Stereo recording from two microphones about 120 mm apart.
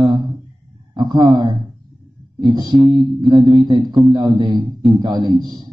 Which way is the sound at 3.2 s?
40° right (ahead or behind).